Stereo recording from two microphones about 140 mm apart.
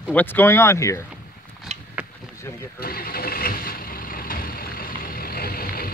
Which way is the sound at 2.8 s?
90° left.